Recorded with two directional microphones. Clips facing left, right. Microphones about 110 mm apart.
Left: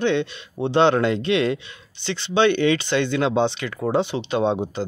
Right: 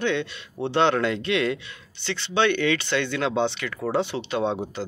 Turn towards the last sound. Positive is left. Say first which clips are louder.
# left 4 dB
turn(degrees=25)  # may be behind; listen again after turning